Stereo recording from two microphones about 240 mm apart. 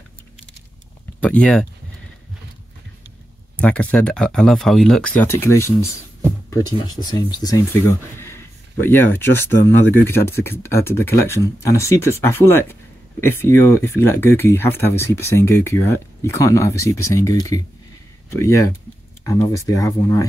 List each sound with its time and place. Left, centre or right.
1.2 s speech: centre
3.5 s speech: centre